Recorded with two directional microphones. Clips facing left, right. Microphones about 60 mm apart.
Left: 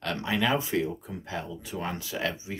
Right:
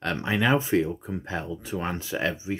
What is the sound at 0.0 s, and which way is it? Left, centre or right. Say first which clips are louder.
Speech: right 3 dB; right.